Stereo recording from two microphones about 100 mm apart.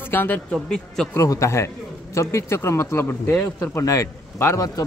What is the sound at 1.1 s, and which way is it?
A man's voice, 30° left (ahead or behind).